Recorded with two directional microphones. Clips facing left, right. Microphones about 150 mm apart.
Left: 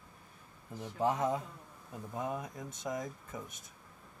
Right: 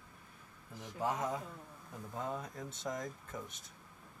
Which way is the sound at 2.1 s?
15° left (ahead or behind).